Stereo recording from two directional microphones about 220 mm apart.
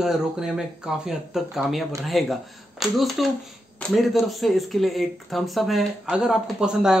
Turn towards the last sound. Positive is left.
turn(degrees=-5)  # may be behind; listen again after turning